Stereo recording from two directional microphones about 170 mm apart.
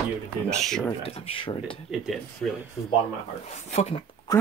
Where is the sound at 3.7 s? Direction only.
40° left (ahead or behind).